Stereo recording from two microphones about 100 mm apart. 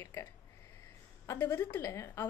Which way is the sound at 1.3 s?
25° left (ahead or behind).